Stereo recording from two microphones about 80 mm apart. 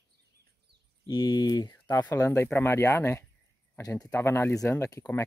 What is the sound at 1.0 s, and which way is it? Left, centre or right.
Speech, left.